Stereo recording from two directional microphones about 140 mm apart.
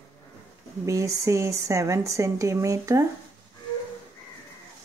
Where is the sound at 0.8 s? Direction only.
20° right (ahead or behind).